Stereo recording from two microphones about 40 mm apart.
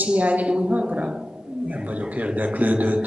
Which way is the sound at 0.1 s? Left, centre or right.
Right.